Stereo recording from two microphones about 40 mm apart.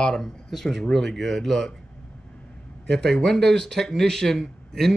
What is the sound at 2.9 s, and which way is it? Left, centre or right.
Speech, centre.